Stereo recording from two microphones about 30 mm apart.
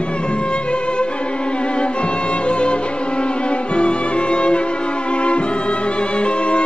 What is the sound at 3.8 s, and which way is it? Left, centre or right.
Music, left.